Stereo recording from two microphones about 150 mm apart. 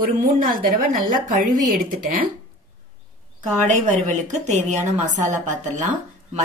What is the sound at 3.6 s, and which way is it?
A woman's voice, 50° right (ahead or behind).